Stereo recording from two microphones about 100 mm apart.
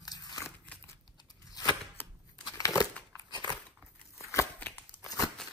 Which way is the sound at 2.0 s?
25° left (ahead or behind).